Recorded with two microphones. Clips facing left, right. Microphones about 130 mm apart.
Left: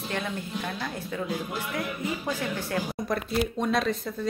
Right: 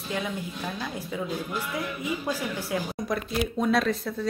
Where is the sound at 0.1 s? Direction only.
5° right (ahead or behind).